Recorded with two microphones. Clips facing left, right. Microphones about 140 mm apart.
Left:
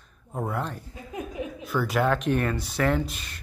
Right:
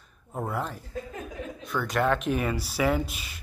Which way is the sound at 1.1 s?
15° left (ahead or behind).